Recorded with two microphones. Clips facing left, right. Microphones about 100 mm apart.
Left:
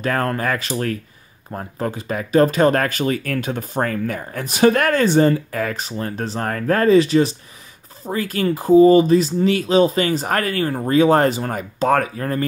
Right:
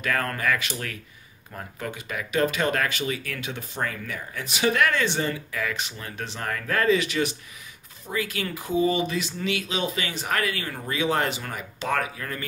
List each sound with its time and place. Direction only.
0.0 s speech: 35° left (ahead or behind)